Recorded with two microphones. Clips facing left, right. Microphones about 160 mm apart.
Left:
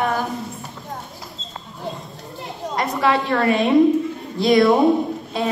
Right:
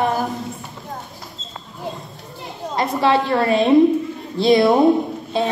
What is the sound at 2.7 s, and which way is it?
A woman's voice, 30° right (ahead or behind).